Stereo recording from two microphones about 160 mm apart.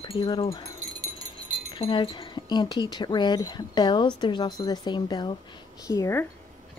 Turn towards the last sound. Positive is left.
turn(degrees=15)  # may be behind; listen again after turning